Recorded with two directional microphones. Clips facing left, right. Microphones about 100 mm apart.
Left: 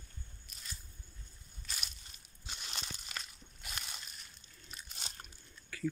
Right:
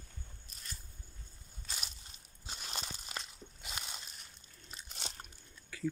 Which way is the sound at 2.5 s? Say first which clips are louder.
Right 2 dB; 40° right (ahead or behind).